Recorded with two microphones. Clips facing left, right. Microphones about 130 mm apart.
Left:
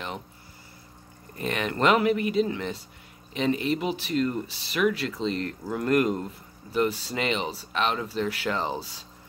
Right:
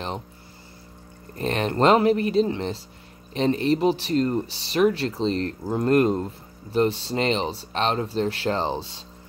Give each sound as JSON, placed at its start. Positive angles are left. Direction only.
{"t": 1.4, "sound": "speech", "side_deg": -35}